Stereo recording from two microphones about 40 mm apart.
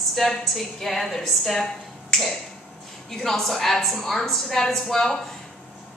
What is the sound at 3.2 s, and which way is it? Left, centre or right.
A woman's voice, centre.